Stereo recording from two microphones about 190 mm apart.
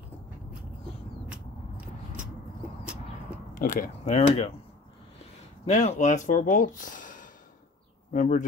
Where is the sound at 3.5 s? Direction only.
45° left (ahead or behind).